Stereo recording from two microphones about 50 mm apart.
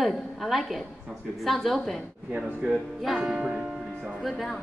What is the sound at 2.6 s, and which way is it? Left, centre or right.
Speech, centre.